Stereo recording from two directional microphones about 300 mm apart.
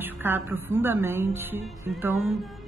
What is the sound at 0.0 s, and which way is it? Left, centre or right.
A woman's voice, centre.